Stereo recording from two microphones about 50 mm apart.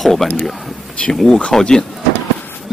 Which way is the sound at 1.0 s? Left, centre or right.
Centre.